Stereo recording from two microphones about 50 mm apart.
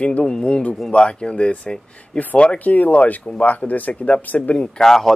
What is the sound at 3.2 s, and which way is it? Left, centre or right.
Speech, centre.